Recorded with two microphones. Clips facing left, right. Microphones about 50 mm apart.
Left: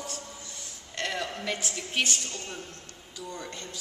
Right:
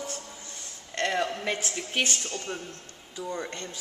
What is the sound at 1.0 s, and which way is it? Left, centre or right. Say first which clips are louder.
Speech: right 4 dB; centre.